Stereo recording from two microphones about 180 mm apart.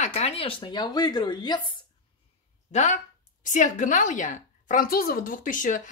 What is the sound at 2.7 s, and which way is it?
A woman's voice, 40° left (ahead or behind).